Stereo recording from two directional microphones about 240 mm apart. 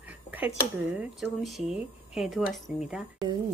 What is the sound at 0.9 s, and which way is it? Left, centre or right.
Speech, centre.